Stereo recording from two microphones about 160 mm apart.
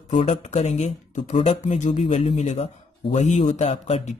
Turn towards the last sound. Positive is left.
turn(degrees=45)  # may be behind; listen again after turning